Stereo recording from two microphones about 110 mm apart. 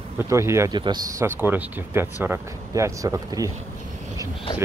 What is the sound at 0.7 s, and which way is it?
Speech, 45° right (ahead or behind).